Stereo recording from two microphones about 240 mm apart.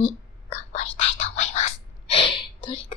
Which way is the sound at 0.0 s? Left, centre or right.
Left.